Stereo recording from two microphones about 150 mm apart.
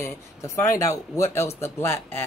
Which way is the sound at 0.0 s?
20° left (ahead or behind).